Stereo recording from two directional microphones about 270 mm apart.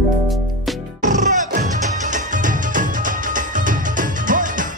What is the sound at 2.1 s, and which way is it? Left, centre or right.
Music, right.